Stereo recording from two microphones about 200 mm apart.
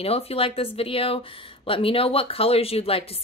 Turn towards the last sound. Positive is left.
turn(degrees=30)  # may be behind; listen again after turning